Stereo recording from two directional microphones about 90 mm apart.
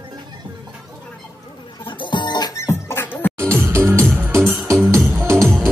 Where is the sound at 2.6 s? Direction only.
30° left (ahead or behind).